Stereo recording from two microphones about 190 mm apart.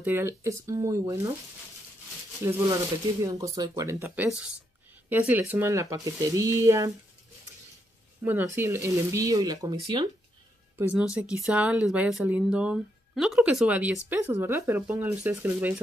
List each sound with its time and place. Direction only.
0.0 s speech: 10° right (ahead or behind)
3.3 s speech: 15° right (ahead or behind)
8.2 s speech: 10° right (ahead or behind)
10.8 s speech: 5° right (ahead or behind)